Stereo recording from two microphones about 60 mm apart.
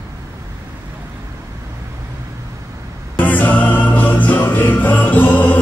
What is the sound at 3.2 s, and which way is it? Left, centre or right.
Music, left.